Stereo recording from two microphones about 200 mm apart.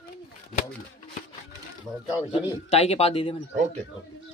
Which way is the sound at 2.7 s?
30° left (ahead or behind).